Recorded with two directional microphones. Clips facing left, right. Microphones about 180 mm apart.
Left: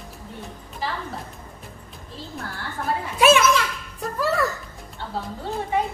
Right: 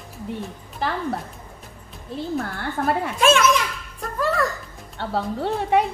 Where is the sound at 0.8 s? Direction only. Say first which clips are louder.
Right 4 dB; 60° right (ahead or behind).